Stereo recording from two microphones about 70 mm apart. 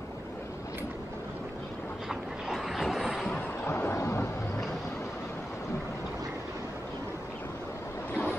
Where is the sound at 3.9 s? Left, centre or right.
Left.